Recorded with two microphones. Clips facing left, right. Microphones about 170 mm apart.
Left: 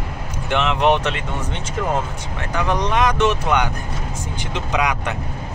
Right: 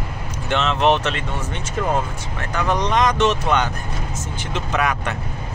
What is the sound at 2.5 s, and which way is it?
Speech, 15° left (ahead or behind).